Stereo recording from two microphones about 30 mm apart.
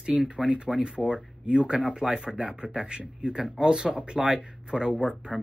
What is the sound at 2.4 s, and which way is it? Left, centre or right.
A man's voice, right.